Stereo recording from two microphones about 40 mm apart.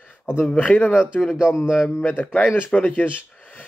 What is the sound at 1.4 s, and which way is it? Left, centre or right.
Speech, right.